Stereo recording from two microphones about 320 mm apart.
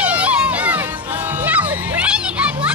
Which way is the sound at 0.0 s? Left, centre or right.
Centre.